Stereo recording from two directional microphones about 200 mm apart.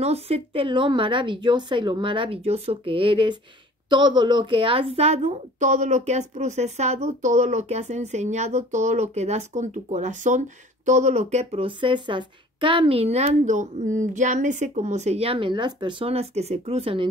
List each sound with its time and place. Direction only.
0.0 s a woman's voice: 30° right (ahead or behind)